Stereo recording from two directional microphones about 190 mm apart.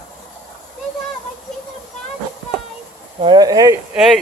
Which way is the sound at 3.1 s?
25° right (ahead or behind).